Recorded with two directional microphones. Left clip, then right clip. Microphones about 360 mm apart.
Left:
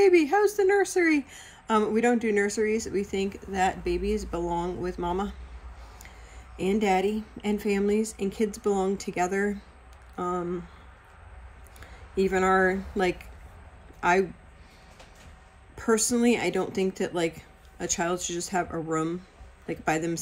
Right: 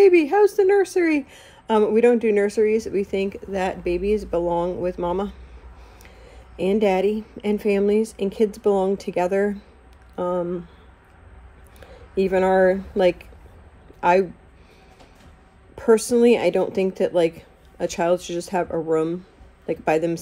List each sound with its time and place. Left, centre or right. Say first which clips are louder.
0.0 s speech: right 6 dB; centre
11.8 s speech: right 4 dB; centre
13.9 s a sound: right 6 dB; centre
15.7 s speech: right 8 dB; centre